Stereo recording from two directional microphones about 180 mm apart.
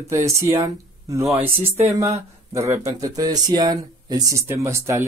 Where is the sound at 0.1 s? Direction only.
15° right (ahead or behind).